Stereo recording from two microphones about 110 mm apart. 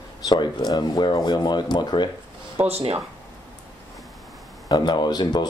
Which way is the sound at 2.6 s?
65° right (ahead or behind).